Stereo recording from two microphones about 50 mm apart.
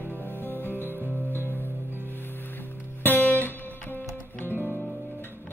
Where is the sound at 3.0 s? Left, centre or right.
Left.